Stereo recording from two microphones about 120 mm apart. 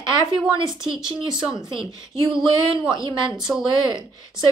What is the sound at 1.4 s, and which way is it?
A woman's voice, 40° right (ahead or behind).